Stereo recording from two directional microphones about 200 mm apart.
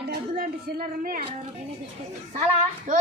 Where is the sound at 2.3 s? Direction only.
40° right (ahead or behind).